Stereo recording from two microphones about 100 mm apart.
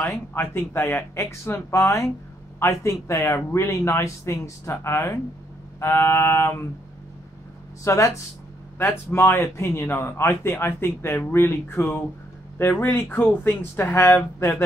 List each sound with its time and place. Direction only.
0.0 s speech: 20° left (ahead or behind)
7.8 s speech: 30° left (ahead or behind)